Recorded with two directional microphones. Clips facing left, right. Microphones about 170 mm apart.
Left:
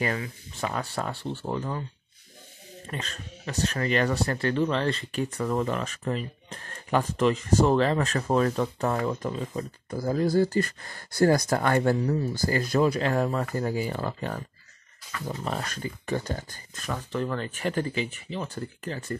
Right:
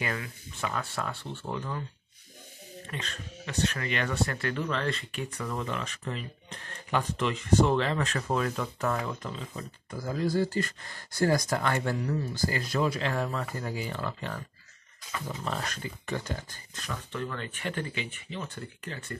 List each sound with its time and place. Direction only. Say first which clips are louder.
0.6 s speech: left 3 dB; 35° left (ahead or behind)
2.9 s speech: left 3 dB; 40° left (ahead or behind)